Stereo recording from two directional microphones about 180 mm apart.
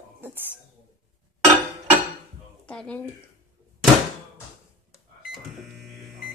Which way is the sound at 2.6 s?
5° left (ahead or behind).